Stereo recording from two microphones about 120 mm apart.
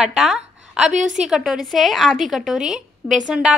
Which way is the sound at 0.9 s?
85° right.